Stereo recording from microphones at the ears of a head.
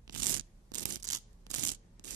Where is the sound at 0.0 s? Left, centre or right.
Right.